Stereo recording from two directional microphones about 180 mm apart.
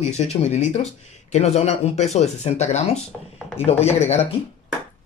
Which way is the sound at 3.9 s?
40° left (ahead or behind).